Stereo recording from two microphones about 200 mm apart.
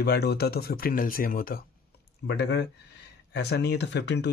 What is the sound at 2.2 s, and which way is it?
Speech, 60° left (ahead or behind).